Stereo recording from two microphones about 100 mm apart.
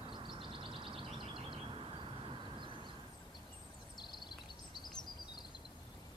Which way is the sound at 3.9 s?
50° left (ahead or behind).